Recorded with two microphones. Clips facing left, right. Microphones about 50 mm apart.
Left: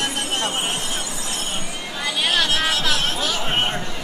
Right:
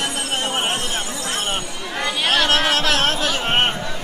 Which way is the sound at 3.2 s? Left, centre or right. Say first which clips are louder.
Right 3 dB; right.